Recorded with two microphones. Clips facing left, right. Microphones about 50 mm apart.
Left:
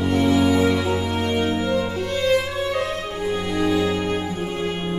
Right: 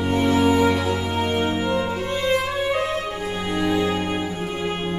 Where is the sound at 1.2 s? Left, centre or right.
Centre.